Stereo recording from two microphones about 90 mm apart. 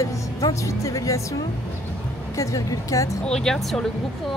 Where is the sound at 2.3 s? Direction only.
40° left (ahead or behind).